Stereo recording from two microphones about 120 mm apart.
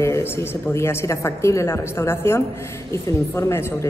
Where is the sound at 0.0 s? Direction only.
20° left (ahead or behind).